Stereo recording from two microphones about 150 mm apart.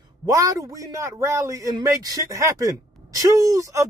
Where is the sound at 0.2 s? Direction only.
25° right (ahead or behind).